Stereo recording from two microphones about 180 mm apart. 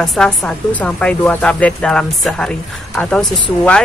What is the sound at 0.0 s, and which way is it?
Speech, centre (ahead or behind).